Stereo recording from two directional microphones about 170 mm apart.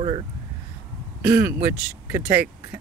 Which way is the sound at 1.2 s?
15° right (ahead or behind).